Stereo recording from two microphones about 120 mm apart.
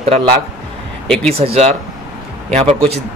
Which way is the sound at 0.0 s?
60° right (ahead or behind).